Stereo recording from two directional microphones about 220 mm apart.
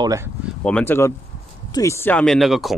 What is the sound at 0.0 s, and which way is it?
Speech, 15° right (ahead or behind).